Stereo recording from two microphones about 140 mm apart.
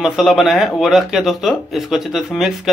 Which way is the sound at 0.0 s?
Centre (ahead or behind).